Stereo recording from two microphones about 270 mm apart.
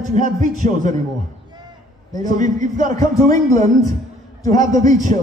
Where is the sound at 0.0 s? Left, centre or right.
Right.